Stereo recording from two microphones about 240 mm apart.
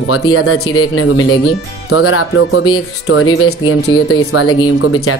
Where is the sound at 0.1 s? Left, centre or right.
Left.